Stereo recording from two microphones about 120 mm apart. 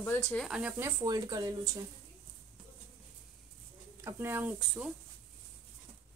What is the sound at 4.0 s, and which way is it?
Speech, 20° right (ahead or behind).